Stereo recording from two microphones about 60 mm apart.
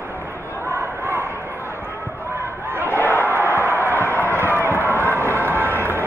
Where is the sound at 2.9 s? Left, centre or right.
Left.